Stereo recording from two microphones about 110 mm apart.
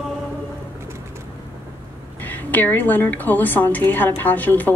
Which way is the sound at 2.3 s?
15° left (ahead or behind).